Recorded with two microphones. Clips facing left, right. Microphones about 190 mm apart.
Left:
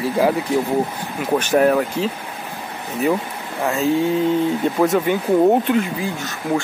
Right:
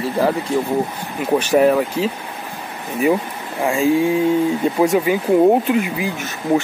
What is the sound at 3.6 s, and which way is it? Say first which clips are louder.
Speech: right 2 dB; 15° right (ahead or behind).